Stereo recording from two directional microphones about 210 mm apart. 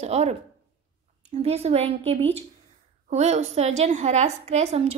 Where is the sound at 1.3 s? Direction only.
30° right (ahead or behind).